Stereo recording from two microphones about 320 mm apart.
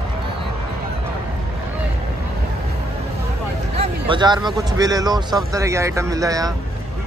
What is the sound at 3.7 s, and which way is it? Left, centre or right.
Speech, centre.